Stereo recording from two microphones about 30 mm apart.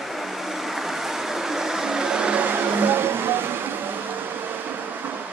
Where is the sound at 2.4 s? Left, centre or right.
Right.